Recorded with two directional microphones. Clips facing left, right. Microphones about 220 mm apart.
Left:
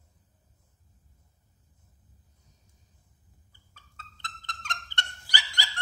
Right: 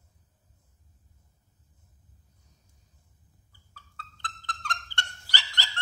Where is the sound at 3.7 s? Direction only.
20° left (ahead or behind).